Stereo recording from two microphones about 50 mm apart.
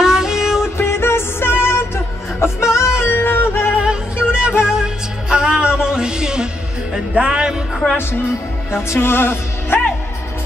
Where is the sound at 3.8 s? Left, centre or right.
Centre.